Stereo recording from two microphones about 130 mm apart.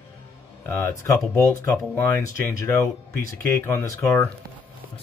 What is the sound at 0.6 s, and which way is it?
Speech, 20° left (ahead or behind).